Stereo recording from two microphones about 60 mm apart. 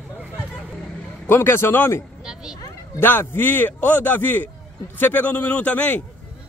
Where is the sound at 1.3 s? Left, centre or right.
Left.